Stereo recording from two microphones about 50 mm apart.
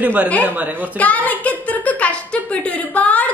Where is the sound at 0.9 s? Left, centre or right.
Left.